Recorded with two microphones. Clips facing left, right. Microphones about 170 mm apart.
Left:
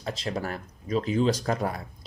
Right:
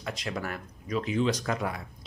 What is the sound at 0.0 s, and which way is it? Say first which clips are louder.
Speech: left 3 dB; 30° left (ahead or behind).